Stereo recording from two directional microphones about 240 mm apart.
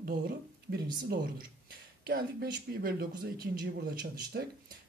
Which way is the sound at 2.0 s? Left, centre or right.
Right.